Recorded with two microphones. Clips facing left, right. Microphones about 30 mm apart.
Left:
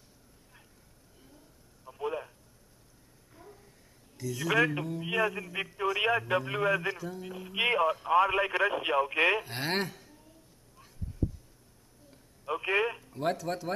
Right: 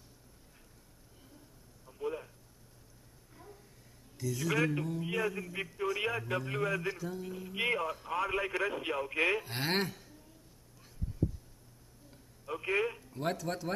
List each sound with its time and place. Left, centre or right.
1.9 s a sound: left
3.3 s a sound: centre
4.2 s a man's voice: centre
6.9 s a man's voice: centre
9.5 s speech: centre
12.4 s speech: left
13.1 s speech: centre